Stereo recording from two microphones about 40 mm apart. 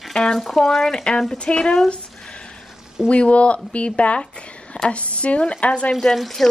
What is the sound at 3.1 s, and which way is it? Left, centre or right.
Speech, left.